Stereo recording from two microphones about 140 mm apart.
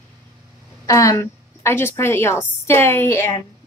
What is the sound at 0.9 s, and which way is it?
A woman's voice, 25° left (ahead or behind).